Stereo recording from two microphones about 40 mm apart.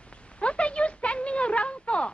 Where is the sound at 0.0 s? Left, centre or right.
Left.